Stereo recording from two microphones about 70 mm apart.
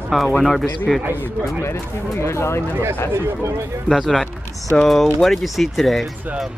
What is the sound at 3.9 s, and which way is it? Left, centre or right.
Speech, centre.